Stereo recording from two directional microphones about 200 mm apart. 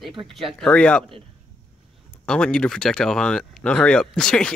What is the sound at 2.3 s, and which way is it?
Speech, 5° left (ahead or behind).